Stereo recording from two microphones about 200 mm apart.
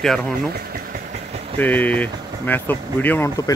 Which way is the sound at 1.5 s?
10° left (ahead or behind).